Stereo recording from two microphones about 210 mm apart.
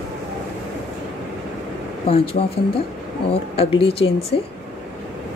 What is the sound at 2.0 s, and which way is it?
Speech, 30° left (ahead or behind).